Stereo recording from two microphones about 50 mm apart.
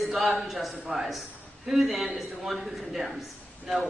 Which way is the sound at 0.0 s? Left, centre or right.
Centre.